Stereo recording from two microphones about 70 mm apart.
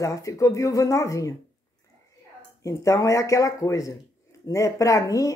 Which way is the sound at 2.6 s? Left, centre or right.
Left.